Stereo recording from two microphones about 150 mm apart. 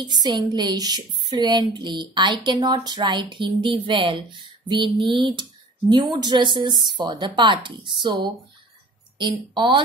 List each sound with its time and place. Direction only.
0.0 s a woman's voice: 30° right (ahead or behind)